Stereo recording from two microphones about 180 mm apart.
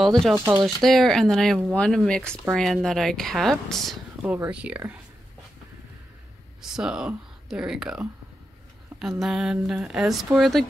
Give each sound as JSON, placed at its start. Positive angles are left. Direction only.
{"t": 0.0, "sound": "speech", "side_deg": 0}
{"t": 0.3, "sound": "speech", "side_deg": -15}
{"t": 0.8, "sound": "speech", "side_deg": 0}
{"t": 6.6, "sound": "speech", "side_deg": -5}